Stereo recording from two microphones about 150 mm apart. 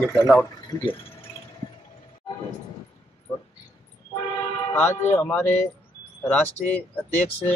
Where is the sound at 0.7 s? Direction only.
30° left (ahead or behind).